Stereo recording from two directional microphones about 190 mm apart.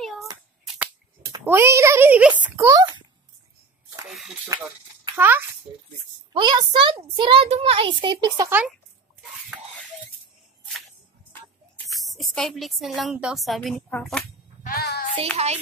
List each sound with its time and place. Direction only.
0.7 s finger snapping: 10° right (ahead or behind)
2.4 s a child's voice: 10° right (ahead or behind)
4.1 s a sound: centre (ahead or behind)
5.1 s a child's voice: 10° right (ahead or behind)
6.3 s a child's voice: 25° right (ahead or behind)
11.9 s speech: centre (ahead or behind)
14.6 s a child's voice: 50° left (ahead or behind)
15.3 s speech: 35° right (ahead or behind)